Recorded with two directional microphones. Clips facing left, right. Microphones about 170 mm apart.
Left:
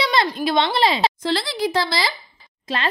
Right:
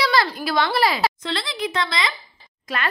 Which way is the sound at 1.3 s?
35° left (ahead or behind).